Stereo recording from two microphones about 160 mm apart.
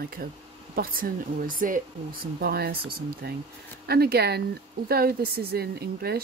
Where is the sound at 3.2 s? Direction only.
90° right.